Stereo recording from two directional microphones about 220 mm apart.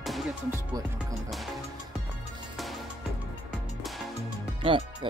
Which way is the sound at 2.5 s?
Centre (ahead or behind).